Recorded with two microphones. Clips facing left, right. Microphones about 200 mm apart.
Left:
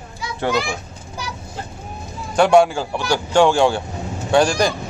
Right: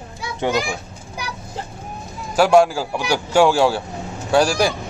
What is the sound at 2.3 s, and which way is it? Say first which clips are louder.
Speech: even; centre (ahead or behind).